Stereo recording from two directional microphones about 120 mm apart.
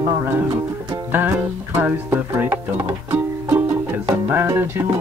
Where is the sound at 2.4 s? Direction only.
20° right (ahead or behind).